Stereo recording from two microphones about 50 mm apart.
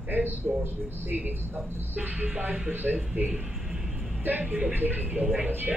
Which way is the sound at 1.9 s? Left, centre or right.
Right.